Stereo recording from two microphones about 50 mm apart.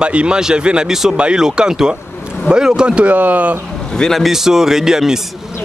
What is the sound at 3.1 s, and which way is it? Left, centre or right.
Speech, right.